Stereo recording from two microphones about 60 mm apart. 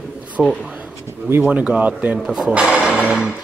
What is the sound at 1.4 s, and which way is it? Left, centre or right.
A man's voice, right.